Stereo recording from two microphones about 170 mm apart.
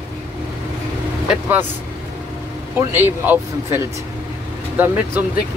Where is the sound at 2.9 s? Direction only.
10° right (ahead or behind).